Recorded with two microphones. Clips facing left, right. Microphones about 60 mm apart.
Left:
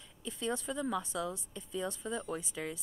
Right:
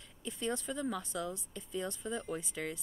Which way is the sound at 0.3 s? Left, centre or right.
Centre.